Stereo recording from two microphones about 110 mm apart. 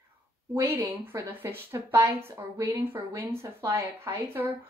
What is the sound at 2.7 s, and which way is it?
A woman's voice, 20° right (ahead or behind).